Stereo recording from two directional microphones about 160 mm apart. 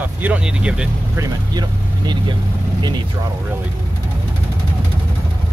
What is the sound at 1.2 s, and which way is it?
Speech, 25° right (ahead or behind).